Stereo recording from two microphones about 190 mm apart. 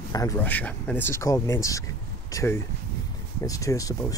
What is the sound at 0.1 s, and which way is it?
Speech, 15° left (ahead or behind).